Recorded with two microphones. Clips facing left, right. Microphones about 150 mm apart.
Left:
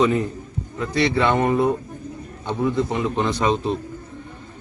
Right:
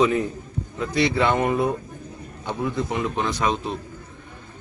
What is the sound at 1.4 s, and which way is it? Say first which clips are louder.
Speech: left 3 dB; 25° left (ahead or behind).